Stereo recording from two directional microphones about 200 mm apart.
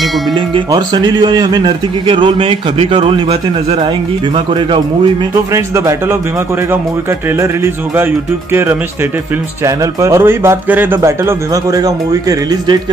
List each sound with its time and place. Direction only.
0.7 s speech: 20° right (ahead or behind)
5.5 s speech: 15° right (ahead or behind)
7.3 s speech: 10° right (ahead or behind)
9.7 s speech: 15° right (ahead or behind)